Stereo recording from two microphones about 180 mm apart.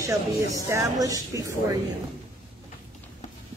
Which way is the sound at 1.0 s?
20° right (ahead or behind).